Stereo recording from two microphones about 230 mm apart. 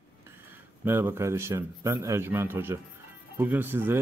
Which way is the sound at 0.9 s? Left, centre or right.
Centre.